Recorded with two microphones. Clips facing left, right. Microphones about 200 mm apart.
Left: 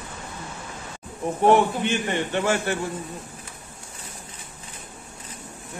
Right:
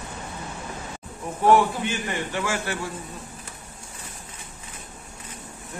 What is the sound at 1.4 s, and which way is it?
A man's voice, 25° left (ahead or behind).